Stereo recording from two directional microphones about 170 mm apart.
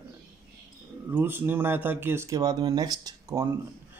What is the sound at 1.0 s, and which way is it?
Speech, 10° right (ahead or behind).